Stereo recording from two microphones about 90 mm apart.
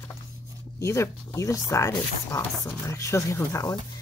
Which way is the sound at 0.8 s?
35° left (ahead or behind).